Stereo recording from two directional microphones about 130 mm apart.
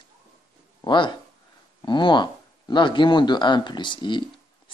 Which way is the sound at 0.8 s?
35° left (ahead or behind).